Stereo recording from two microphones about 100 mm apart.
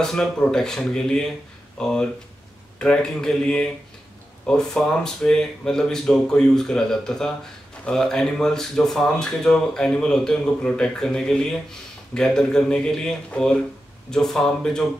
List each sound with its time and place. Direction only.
0.0 s speech: 5° left (ahead or behind)